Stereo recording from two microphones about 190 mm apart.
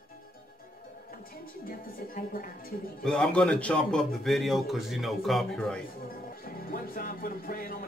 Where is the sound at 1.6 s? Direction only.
50° left (ahead or behind).